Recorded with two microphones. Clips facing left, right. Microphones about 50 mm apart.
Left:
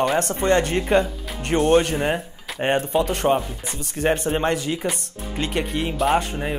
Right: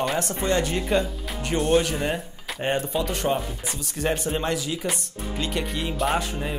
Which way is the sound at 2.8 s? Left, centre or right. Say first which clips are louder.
Left 5 dB; left.